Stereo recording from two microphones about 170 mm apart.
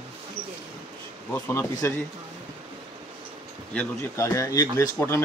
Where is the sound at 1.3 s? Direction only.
15° left (ahead or behind).